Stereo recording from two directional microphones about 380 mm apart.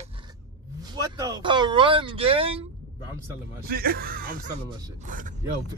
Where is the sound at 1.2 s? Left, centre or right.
Centre.